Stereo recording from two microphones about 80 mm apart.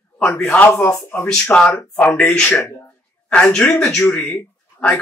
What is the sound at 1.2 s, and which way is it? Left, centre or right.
Speech, centre.